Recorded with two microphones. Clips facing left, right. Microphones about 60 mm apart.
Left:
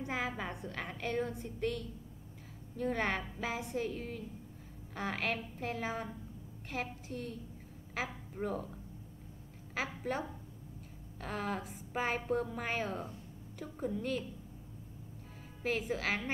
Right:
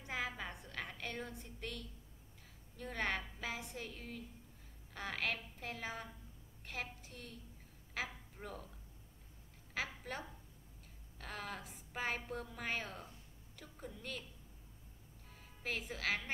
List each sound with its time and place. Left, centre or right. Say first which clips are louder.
0.0 s a sound: left 5 dB; centre
0.7 s a woman's voice: left 6 dB; centre
10.1 s a woman's voice: left 9 dB; centre; by 14.0 s left
15.6 s a woman's voice: left 6 dB; centre